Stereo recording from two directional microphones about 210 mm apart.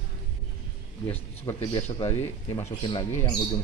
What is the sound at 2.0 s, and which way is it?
Speech, 10° left (ahead or behind).